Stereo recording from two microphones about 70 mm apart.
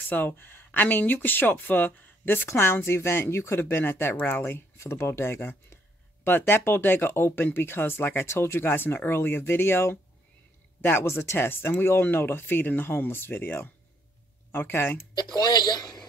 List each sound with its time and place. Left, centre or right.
0.1 s speech: left
15.3 s a man's voice: left